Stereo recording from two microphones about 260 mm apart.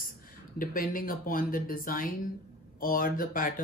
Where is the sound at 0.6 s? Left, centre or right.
Left.